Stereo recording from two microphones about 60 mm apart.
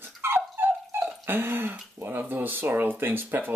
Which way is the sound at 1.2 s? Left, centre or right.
Right.